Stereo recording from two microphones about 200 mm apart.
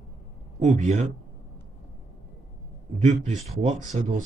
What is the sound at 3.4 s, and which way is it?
Speech, 35° right (ahead or behind).